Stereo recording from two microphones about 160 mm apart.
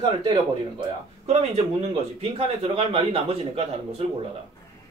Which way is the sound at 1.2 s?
45° right (ahead or behind).